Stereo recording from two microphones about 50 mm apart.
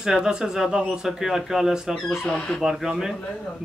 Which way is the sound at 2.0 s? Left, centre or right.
Centre.